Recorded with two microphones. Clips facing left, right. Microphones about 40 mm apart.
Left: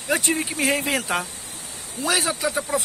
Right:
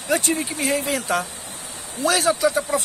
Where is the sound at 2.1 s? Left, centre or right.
Centre.